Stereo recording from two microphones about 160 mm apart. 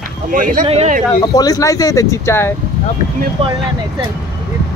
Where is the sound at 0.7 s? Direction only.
40° right (ahead or behind).